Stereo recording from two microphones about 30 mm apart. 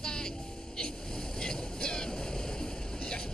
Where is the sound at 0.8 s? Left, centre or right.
Left.